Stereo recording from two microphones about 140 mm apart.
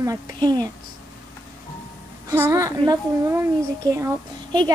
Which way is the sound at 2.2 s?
20° right (ahead or behind).